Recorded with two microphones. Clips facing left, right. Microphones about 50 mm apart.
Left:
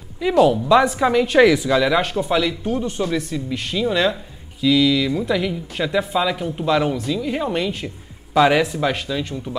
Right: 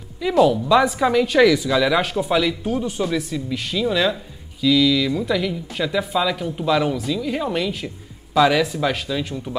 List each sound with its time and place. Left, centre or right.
0.2 s speech: centre
1.2 s speech: left
1.7 s speech: centre
8.4 s speech: centre
8.7 s speech: centre